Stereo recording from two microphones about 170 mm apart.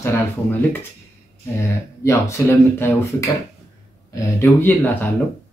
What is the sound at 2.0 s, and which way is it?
Speech, 15° left (ahead or behind).